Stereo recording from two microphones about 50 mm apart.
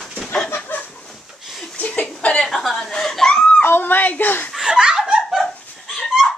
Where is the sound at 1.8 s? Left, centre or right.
Left.